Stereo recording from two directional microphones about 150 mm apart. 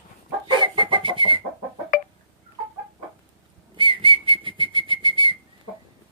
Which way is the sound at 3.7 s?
35° right (ahead or behind).